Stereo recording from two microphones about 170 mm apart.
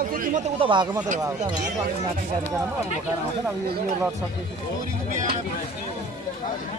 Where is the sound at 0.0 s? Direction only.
50° right (ahead or behind).